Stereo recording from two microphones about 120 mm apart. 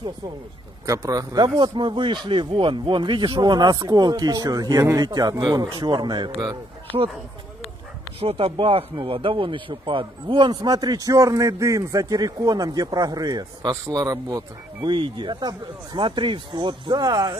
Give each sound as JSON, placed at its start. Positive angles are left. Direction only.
{"t": 0.8, "sound": "speech", "side_deg": -30}
{"t": 8.2, "sound": "speech", "side_deg": -55}